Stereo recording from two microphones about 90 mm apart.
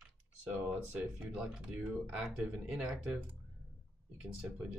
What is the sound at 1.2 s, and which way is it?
Speech, 10° right (ahead or behind).